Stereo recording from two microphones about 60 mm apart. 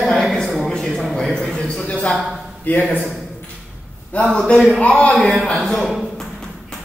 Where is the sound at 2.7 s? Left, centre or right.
Left.